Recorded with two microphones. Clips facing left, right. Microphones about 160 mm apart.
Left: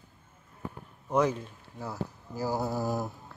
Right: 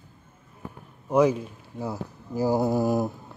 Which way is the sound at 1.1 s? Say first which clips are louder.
Right 6 dB; 10° right (ahead or behind).